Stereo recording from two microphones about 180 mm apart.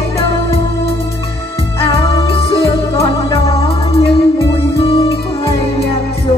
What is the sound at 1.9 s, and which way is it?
Music, 30° left (ahead or behind).